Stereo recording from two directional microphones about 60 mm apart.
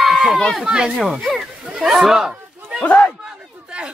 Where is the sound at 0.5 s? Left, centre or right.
Centre.